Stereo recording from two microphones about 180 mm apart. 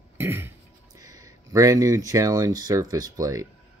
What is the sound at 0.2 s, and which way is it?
Throat clearing, 10° right (ahead or behind).